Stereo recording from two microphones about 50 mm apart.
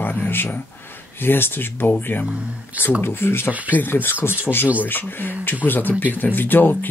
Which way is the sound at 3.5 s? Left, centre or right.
Right.